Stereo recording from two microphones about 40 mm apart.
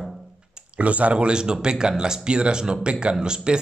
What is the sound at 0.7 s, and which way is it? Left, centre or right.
A man's voice, right.